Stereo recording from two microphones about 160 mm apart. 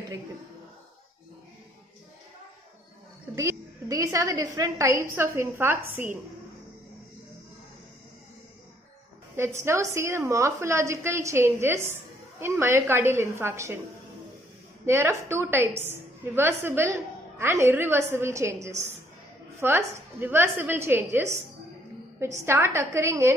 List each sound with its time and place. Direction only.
3.3 s a woman's voice: 20° right (ahead or behind)
9.4 s a woman's voice: 15° right (ahead or behind)
14.9 s a woman's voice: 15° right (ahead or behind)
18.7 s a woman's voice: 45° right (ahead or behind)
19.6 s a woman's voice: 15° right (ahead or behind)
22.4 s a woman's voice: 15° right (ahead or behind)